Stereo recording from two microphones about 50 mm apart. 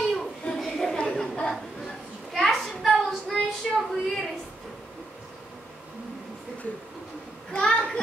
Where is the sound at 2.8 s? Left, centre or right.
Centre.